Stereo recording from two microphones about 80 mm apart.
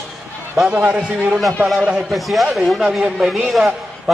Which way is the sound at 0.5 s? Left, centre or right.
Centre.